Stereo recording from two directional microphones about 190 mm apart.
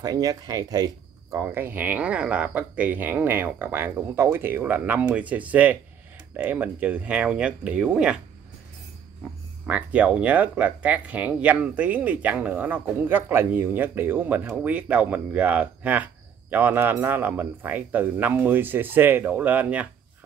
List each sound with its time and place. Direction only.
0.0 s speech: 20° right (ahead or behind)
9.7 s speech: 5° right (ahead or behind)